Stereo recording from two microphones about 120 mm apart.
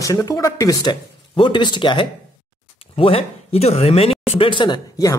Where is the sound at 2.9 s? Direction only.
50° left (ahead or behind); by 5.2 s 35° left (ahead or behind).